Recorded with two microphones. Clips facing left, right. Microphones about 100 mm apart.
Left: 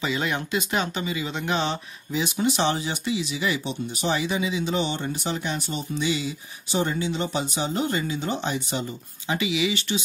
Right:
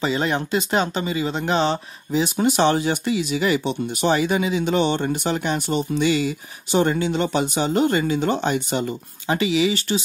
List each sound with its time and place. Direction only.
0.0 s speech: 35° right (ahead or behind)